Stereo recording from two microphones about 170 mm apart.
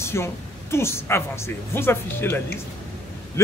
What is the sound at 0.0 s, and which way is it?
A man's voice, 15° left (ahead or behind).